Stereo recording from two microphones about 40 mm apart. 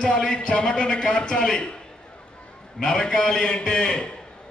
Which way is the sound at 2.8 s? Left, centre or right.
Centre.